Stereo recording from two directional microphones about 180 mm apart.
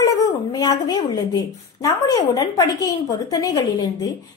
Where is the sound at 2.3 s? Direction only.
20° left (ahead or behind).